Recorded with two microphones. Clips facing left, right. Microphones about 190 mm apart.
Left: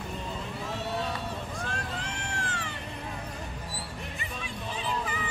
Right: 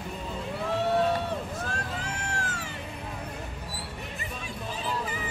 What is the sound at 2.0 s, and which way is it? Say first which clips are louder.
Cat: right 2 dB; 40° right (ahead or behind).